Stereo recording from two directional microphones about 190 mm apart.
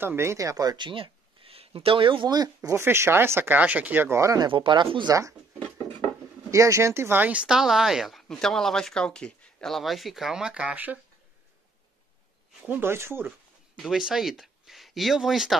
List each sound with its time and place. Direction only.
0.0 s speech: 15° right (ahead or behind)
6.5 s speech: 15° right (ahead or behind)
12.6 s speech: 10° right (ahead or behind)
13.7 s speech: centre (ahead or behind)